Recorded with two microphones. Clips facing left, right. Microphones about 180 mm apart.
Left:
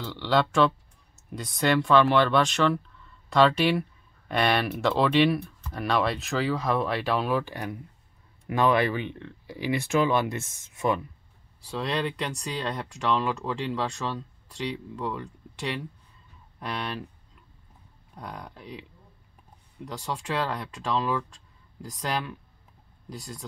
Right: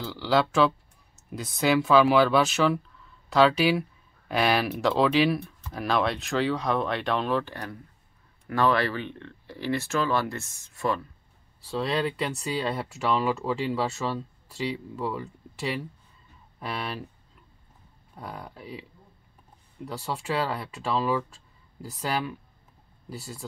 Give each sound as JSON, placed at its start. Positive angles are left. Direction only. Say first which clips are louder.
{"t": 0.0, "sound": "speech", "louder": "right 1 dB", "side_deg": 0}
{"t": 11.6, "sound": "speech", "louder": "right 2 dB", "side_deg": 0}
{"t": 18.1, "sound": "speech", "louder": "right 1 dB", "side_deg": -5}